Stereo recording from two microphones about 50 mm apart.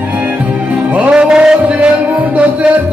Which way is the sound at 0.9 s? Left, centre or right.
Right.